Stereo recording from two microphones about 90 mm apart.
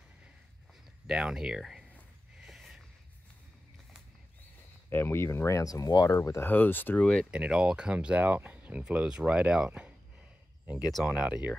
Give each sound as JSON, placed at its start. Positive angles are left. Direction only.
{"t": 1.0, "sound": "speech", "side_deg": -10}
{"t": 2.4, "sound": "a sound", "side_deg": -5}
{"t": 4.8, "sound": "speech", "side_deg": 25}
{"t": 6.5, "sound": "speech", "side_deg": 20}
{"t": 7.2, "sound": "speech", "side_deg": -10}
{"t": 10.8, "sound": "speech", "side_deg": 0}
{"t": 11.1, "sound": "speech", "side_deg": -15}